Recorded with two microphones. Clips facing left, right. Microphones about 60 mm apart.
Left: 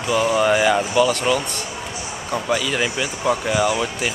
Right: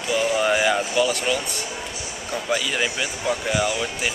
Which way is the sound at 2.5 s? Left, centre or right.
Centre.